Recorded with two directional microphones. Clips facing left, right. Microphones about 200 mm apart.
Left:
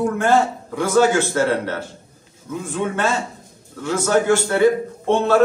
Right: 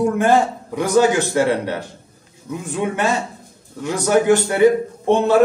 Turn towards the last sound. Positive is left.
turn(degrees=-15)  # may be behind; listen again after turning